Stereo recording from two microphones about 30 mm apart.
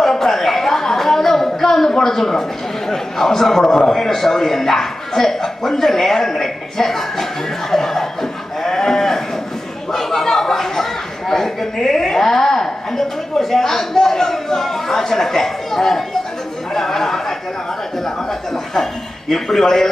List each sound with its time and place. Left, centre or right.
0.0 s a sound: centre
2.9 s a man's voice: centre
7.7 s sheep: centre
9.9 s a sound: centre
16.7 s chatter: centre
18.8 s speech: centre